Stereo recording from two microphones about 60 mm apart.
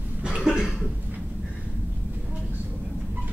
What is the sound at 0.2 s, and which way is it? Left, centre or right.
Cough, centre.